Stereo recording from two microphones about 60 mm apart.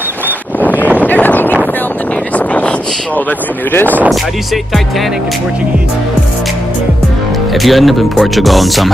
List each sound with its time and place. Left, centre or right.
1.0 s a sound: left
3.7 s speech: left
7.5 s speech: centre